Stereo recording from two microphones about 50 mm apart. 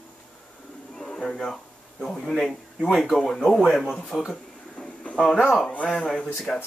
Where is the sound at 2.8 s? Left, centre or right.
Centre.